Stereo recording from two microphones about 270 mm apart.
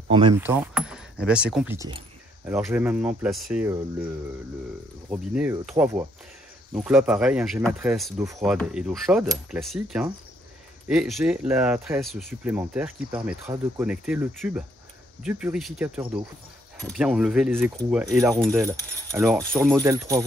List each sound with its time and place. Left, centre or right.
0.1 s speech: centre
0.4 s speech: centre
5.1 s speech: centre